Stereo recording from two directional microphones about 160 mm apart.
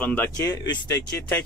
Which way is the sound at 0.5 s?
20° left (ahead or behind).